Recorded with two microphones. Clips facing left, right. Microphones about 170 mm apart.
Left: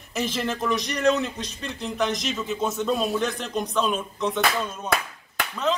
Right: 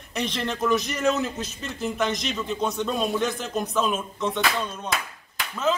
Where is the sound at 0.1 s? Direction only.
5° left (ahead or behind).